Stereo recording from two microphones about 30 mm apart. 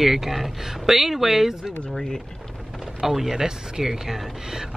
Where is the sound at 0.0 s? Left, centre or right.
Centre.